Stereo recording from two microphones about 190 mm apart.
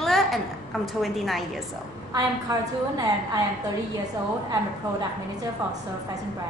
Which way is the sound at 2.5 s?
20° right (ahead or behind).